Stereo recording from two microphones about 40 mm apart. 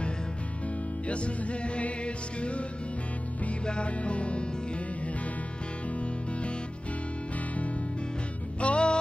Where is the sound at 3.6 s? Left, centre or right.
Left.